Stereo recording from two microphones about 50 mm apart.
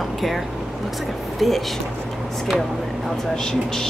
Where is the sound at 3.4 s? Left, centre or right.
Centre.